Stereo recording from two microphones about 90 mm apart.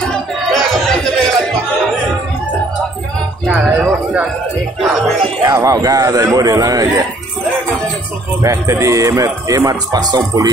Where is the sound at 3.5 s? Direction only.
15° right (ahead or behind).